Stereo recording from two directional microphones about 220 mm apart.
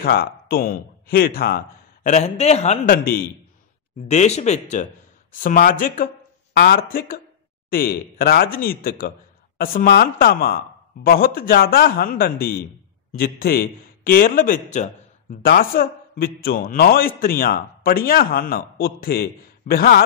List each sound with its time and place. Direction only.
0.0 s speech: 40° left (ahead or behind)
2.0 s a man's voice: 30° left (ahead or behind)
4.1 s a man's voice: 30° left (ahead or behind)